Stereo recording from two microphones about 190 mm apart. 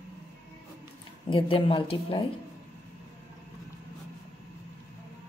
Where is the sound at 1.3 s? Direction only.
30° left (ahead or behind).